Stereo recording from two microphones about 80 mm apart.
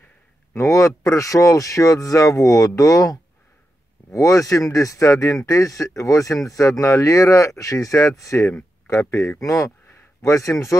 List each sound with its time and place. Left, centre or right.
0.6 s a man's voice: left